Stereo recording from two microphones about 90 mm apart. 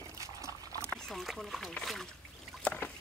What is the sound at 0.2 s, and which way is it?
Liquid, 35° right (ahead or behind).